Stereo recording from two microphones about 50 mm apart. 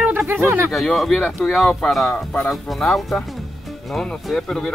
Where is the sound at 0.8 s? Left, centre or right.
Centre.